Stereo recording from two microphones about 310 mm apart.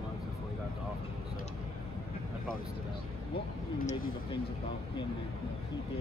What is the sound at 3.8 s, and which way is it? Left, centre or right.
Speech, centre.